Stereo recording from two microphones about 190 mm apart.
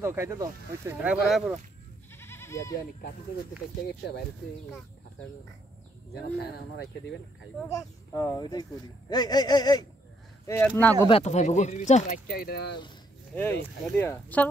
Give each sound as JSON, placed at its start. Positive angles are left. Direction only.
{"t": 0.0, "sound": "speech", "side_deg": -15}
{"t": 2.1, "sound": "goat", "side_deg": 15}
{"t": 6.4, "sound": "speech", "side_deg": 60}
{"t": 7.7, "sound": "speech", "side_deg": 15}
{"t": 11.1, "sound": "speech", "side_deg": 30}
{"t": 12.3, "sound": "speech", "side_deg": 55}
{"t": 13.3, "sound": "speech", "side_deg": 10}